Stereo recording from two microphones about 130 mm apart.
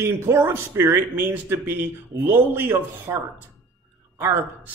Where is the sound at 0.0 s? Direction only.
20° right (ahead or behind).